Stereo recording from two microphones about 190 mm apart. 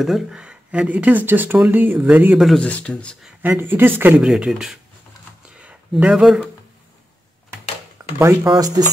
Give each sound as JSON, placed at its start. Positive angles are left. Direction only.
{"t": 0.0, "sound": "speech", "side_deg": 0}
{"t": 3.4, "sound": "speech", "side_deg": -10}
{"t": 8.0, "sound": "a sound", "side_deg": -20}
{"t": 8.5, "sound": "speech", "side_deg": -20}